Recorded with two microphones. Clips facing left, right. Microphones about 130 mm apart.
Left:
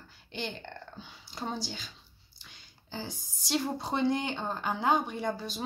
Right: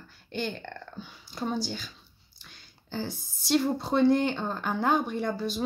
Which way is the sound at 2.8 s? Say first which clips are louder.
Right 6 dB; 15° left (ahead or behind).